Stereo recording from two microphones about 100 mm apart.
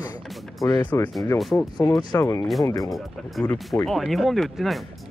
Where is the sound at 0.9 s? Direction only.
25° left (ahead or behind).